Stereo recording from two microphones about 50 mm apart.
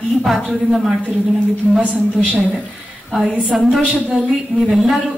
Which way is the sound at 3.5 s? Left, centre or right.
Centre.